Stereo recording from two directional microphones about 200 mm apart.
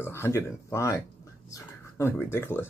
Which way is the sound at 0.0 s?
10° left (ahead or behind).